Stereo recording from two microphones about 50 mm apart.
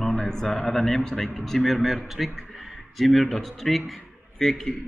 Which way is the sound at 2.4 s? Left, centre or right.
Centre.